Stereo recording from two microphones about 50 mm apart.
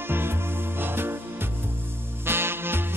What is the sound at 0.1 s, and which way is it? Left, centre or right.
Music, right.